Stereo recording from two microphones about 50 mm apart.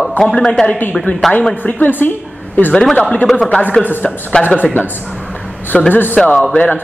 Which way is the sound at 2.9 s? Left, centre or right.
Left.